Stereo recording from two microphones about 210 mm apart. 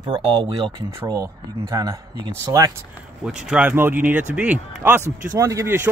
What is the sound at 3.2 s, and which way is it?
Speech, 5° right (ahead or behind).